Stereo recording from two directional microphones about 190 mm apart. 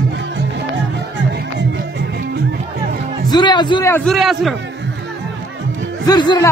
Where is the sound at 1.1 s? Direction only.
70° right (ahead or behind).